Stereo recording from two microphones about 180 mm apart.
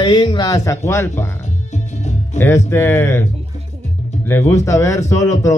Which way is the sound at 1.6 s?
40° left (ahead or behind).